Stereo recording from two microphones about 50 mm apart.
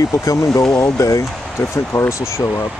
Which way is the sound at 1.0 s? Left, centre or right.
Left.